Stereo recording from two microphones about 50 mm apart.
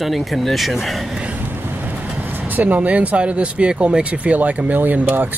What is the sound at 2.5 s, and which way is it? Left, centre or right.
Speech, right.